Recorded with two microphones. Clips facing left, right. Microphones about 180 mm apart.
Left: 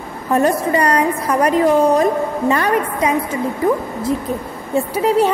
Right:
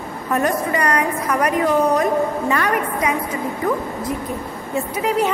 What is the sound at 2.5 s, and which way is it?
Speech, 30° left (ahead or behind).